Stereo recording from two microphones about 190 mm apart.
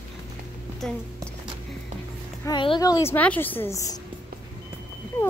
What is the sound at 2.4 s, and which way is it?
A woman's voice, 25° left (ahead or behind).